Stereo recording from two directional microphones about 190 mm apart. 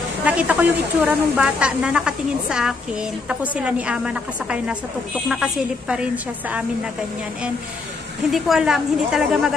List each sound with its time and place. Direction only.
0.2 s speech: 5° right (ahead or behind)
8.3 s speech: centre (ahead or behind)